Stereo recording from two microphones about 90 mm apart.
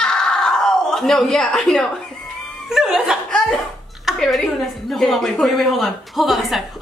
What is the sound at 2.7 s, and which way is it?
A woman's voice, 5° right (ahead or behind).